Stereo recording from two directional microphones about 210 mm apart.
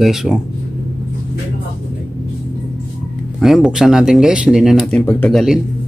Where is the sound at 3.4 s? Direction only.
Centre (ahead or behind).